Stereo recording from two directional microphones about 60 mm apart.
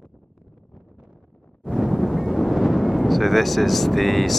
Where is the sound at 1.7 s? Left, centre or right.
Centre.